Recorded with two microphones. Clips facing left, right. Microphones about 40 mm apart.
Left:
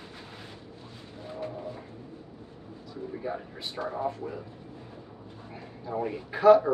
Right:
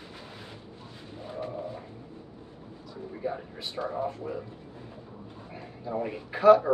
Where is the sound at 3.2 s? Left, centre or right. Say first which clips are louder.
Right 4 dB; centre.